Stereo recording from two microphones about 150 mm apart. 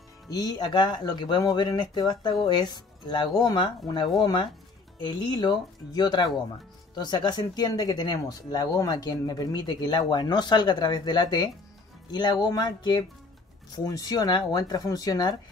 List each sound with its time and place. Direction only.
0.3 s speech: 25° left (ahead or behind)